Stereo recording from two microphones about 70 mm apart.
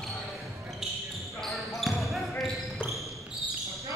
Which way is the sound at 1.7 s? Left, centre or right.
Centre.